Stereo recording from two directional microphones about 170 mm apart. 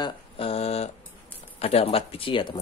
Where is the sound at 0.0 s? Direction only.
35° left (ahead or behind).